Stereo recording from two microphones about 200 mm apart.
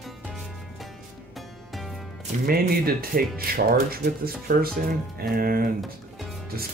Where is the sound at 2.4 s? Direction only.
50° right (ahead or behind).